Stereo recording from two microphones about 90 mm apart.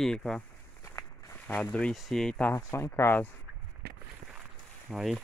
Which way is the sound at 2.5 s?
30° left (ahead or behind).